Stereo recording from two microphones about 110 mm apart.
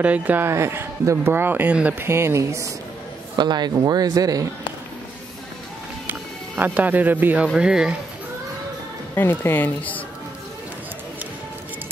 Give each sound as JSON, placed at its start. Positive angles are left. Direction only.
{"t": 0.0, "sound": "speech", "side_deg": -15}
{"t": 3.3, "sound": "speech", "side_deg": -40}
{"t": 6.0, "sound": "music", "side_deg": -15}
{"t": 7.5, "sound": "speech", "side_deg": -5}
{"t": 9.1, "sound": "a woman's voice", "side_deg": 20}